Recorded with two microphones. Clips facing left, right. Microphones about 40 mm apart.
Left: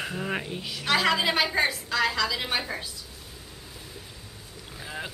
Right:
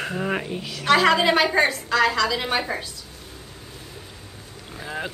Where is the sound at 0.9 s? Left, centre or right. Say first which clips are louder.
Right 6 dB; centre.